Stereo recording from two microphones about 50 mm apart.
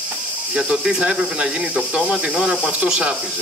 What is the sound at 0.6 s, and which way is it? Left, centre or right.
Speech, centre.